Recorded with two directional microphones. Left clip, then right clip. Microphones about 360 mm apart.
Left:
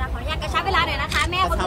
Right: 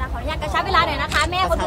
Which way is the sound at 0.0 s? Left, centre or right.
Right.